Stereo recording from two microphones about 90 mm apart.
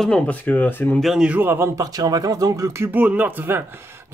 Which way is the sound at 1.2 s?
20° right (ahead or behind).